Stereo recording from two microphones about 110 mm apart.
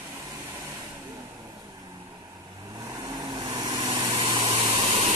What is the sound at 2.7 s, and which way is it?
Vehicle, 30° right (ahead or behind).